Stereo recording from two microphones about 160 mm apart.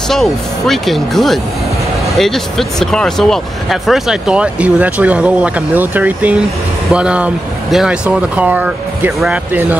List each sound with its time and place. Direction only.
0.1 s speech: centre (ahead or behind)